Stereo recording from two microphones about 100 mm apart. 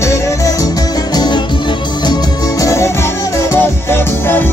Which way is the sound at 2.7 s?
30° left (ahead or behind).